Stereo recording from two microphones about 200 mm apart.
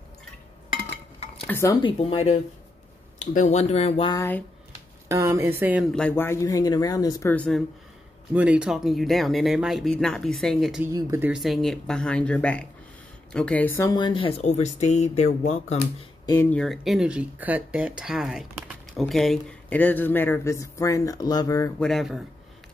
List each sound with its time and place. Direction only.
1.5 s speech: 15° left (ahead or behind)
4.1 s speech: 10° left (ahead or behind)
5.0 s speech: 15° right (ahead or behind)
5.9 s speech: 10° left (ahead or behind)
8.3 s speech: 5° right (ahead or behind)
10.9 s speech: 15° right (ahead or behind); by 15.8 s 35° left (ahead or behind)
16.3 s speech: 10° left (ahead or behind)
21.7 s speech: centre (ahead or behind)